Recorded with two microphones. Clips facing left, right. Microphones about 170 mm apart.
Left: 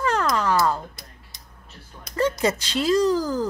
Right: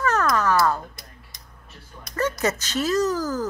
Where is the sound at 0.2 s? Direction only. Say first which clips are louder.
Right 1 dB; 30° left (ahead or behind).